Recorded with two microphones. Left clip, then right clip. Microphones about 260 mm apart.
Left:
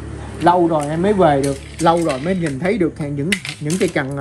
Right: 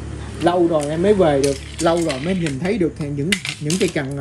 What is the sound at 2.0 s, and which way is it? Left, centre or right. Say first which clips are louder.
Speech: left 2 dB; centre.